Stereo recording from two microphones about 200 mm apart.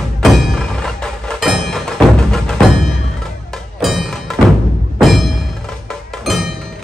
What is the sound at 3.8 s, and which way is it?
Music, centre (ahead or behind).